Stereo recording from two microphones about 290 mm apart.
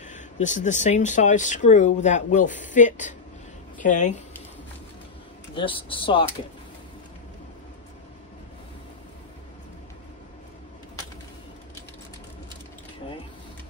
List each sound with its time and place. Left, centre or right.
0.0 s speech: left
5.5 s a man's voice: centre